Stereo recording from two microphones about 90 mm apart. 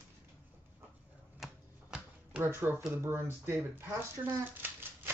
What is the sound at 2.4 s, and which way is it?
Speech, 30° right (ahead or behind).